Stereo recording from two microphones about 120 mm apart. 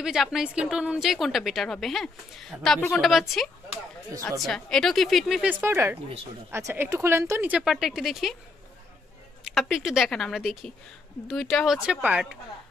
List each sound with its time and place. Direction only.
0.0 s a woman's voice: 5° right (ahead or behind)
5.4 s speech: 15° right (ahead or behind)
9.4 s a sound: centre (ahead or behind)
9.8 s a woman's voice: centre (ahead or behind)